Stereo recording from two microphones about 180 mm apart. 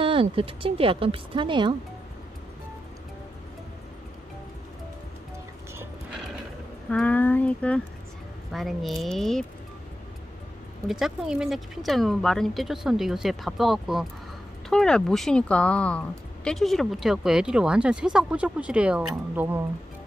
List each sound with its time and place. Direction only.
0.0 s speech: 30° right (ahead or behind)
6.9 s a sound: 10° left (ahead or behind)
8.5 s speech: centre (ahead or behind)
10.9 s speech: centre (ahead or behind)